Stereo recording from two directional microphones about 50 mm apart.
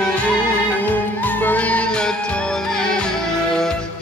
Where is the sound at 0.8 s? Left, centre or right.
Left.